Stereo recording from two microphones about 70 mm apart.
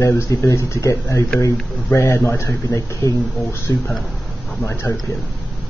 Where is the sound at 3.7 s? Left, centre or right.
Left.